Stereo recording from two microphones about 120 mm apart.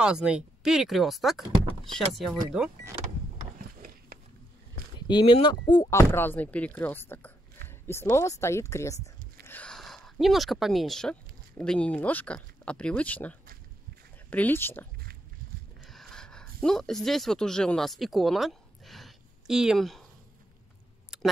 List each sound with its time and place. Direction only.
0.0 s speech: 5° right (ahead or behind)
5.0 s speech: 40° left (ahead or behind)
5.9 s speech: 20° left (ahead or behind)
9.5 s speech: 10° left (ahead or behind)
15.8 s a sound: centre (ahead or behind)
21.1 s a sound: 5° right (ahead or behind)